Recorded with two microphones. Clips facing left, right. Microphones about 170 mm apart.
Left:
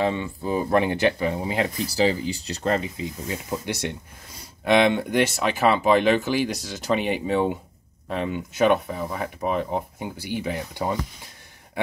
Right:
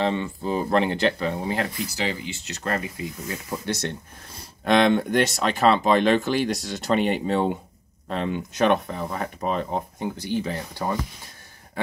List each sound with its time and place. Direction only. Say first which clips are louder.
0.0 s speech: even; 10° left (ahead or behind)
1.9 s speech: left 7 dB; 35° left (ahead or behind); by 11.0 s 15° left (ahead or behind)